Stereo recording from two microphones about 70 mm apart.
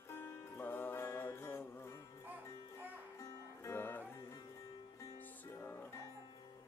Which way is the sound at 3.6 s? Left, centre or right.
Left.